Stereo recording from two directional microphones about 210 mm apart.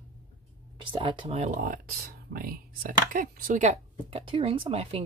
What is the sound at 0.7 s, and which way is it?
Speech, 25° right (ahead or behind).